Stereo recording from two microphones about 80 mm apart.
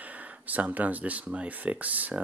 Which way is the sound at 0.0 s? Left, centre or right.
Centre.